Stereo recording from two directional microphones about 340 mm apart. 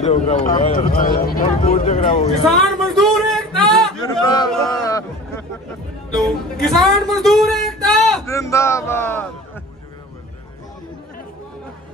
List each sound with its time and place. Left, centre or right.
0.0 s speech: centre
2.4 s a sound: centre
6.1 s speech: centre